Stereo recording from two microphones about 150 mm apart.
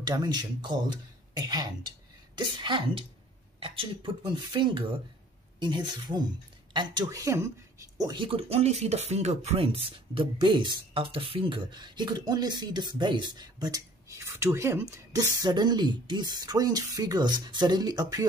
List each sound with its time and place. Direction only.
0.0 s speech: 25° right (ahead or behind)
8.0 s speech: 30° right (ahead or behind)